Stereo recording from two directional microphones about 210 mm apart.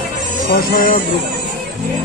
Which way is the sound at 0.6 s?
45° left (ahead or behind).